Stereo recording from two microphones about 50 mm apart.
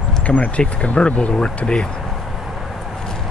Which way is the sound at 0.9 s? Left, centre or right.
Left.